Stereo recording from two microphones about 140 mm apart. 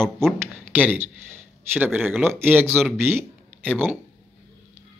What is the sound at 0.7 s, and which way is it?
A man's voice, 10° right (ahead or behind).